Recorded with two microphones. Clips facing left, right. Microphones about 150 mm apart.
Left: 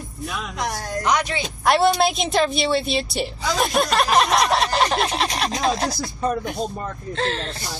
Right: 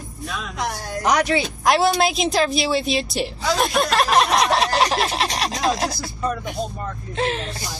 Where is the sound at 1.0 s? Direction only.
35° right (ahead or behind).